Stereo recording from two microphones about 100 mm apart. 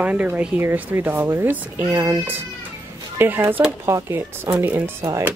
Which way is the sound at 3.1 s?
20° right (ahead or behind).